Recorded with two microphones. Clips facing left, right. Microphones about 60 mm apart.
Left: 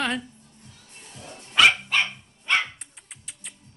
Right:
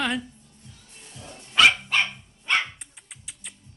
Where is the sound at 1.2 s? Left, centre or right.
Left.